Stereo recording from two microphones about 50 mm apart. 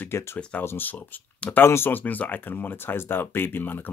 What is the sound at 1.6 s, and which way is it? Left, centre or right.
Speech, left.